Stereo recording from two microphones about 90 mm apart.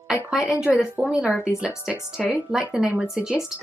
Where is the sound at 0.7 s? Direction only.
15° right (ahead or behind).